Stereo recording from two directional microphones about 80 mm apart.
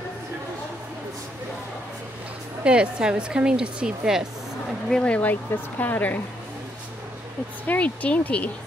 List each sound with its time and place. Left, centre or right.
2.6 s speech: centre
4.8 s speech: centre
7.6 s speech: centre